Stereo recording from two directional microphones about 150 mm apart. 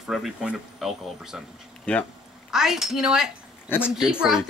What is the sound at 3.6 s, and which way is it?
Speech, 15° left (ahead or behind).